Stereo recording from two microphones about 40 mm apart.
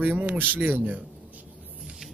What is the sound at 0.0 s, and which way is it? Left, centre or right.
Speech, right.